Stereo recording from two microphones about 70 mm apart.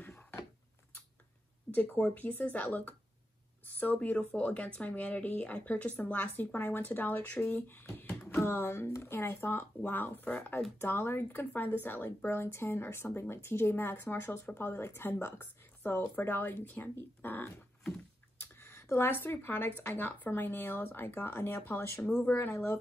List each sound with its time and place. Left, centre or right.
1.7 s speech: left
10.8 s speech: left
18.4 s a sound: left
19.9 s speech: left
22.2 s speech: left